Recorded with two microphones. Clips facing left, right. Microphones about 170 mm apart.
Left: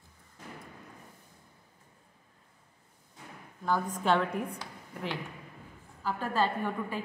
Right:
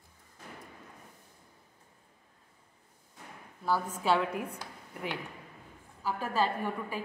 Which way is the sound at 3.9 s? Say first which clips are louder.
Left 1 dB; 5° right (ahead or behind).